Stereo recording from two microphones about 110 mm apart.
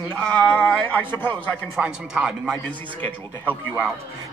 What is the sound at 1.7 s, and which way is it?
Speech, 5° right (ahead or behind).